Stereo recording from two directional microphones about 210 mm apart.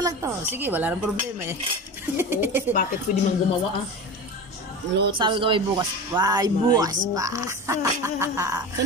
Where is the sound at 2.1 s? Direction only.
10° right (ahead or behind).